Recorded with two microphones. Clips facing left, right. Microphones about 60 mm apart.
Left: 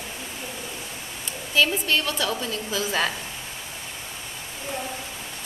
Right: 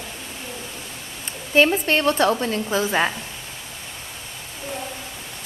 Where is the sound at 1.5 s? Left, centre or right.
Right.